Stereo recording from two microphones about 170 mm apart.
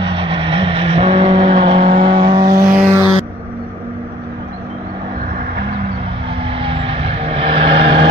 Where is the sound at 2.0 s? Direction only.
25° right (ahead or behind).